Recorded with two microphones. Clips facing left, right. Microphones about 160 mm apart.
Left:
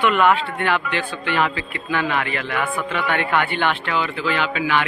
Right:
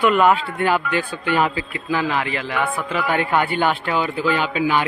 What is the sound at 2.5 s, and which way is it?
A man's voice, 30° right (ahead or behind).